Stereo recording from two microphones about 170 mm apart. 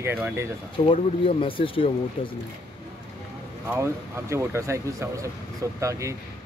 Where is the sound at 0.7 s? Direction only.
30° left (ahead or behind).